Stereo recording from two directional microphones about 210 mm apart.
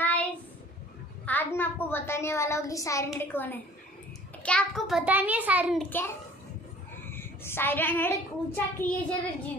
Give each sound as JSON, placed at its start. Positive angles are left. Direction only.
{"t": 0.0, "sound": "child singing", "side_deg": 5}
{"t": 1.2, "sound": "a woman's voice", "side_deg": 10}
{"t": 5.8, "sound": "a woman's voice", "side_deg": 10}